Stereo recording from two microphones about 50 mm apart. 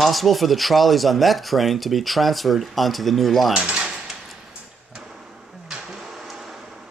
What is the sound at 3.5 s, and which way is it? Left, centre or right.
Cutlery, centre.